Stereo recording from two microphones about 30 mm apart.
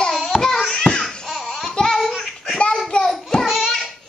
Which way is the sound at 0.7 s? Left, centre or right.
Left.